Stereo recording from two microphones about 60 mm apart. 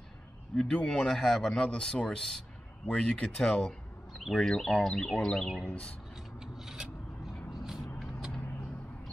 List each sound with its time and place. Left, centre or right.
0.5 s speech: centre
4.2 s speech: centre; by 5.9 s left
6.4 s mechanisms: centre
7.5 s vehicle: centre